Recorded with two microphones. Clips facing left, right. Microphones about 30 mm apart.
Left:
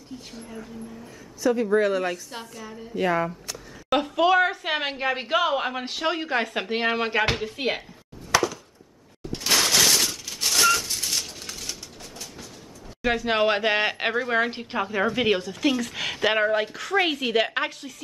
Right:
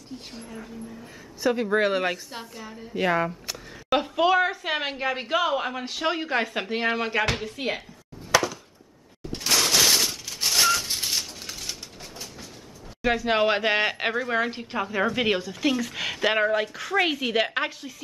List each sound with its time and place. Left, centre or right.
1.4 s a woman's voice: right
3.9 s a woman's voice: centre
6.0 s speech: centre
6.7 s a woman's voice: centre
8.3 s chopping: centre
9.5 s fusillade: centre
10.9 s a sound: centre
11.3 s a sound: centre
13.0 s speech: centre